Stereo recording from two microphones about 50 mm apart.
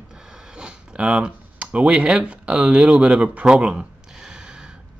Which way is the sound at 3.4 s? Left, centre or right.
Centre.